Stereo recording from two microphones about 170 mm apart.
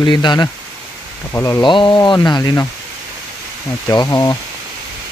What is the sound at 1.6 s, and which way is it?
Speech, 30° left (ahead or behind).